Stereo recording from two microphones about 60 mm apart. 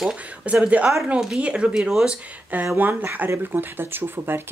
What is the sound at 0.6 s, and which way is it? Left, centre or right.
Speech, right.